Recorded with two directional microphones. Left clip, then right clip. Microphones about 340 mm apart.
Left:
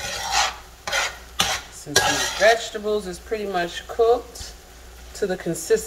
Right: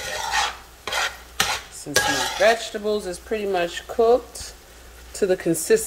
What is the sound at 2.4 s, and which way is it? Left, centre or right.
Speech, right.